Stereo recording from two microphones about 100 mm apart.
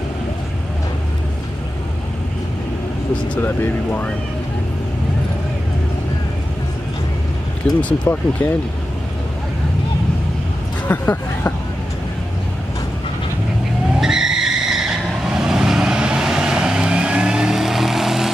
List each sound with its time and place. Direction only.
3.4 s speech: 20° left (ahead or behind)
7.7 s speech: 15° left (ahead or behind)
10.9 s speech: 15° left (ahead or behind)
13.9 s vehicle: 5° right (ahead or behind)